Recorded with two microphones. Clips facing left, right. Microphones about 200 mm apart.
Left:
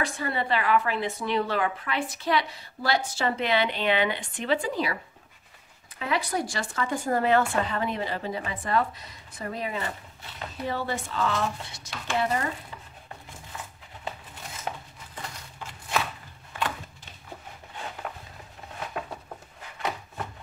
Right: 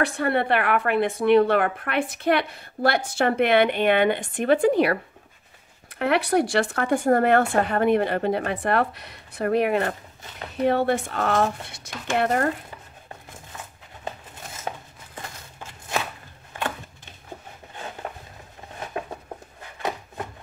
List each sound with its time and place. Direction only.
0.0 s a woman's voice: 65° right (ahead or behind)